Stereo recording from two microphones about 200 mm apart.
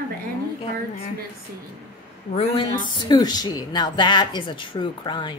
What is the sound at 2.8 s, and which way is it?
Speech, 20° left (ahead or behind).